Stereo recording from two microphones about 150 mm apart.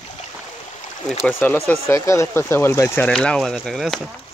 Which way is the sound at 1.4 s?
15° left (ahead or behind).